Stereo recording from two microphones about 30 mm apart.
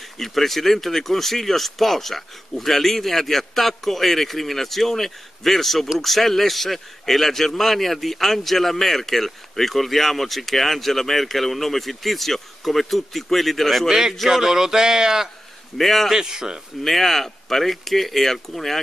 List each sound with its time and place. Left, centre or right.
0.0 s a man's voice: centre
13.8 s speech: centre
15.8 s speech: centre
16.1 s speech: centre
16.8 s speech: centre